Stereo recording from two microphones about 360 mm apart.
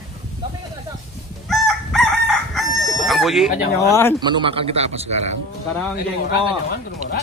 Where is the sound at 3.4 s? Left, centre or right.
Left.